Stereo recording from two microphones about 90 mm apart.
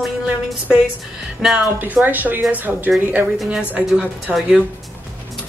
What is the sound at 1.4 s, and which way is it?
Speech, 5° right (ahead or behind).